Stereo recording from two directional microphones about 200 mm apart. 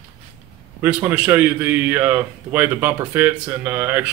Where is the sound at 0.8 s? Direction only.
10° right (ahead or behind).